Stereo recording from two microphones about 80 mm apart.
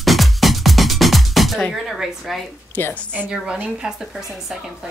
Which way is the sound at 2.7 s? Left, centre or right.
Centre.